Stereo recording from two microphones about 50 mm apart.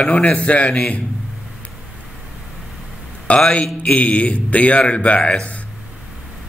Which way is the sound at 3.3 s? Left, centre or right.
Centre.